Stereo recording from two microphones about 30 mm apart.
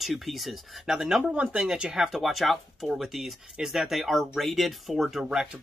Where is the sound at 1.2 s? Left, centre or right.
Right.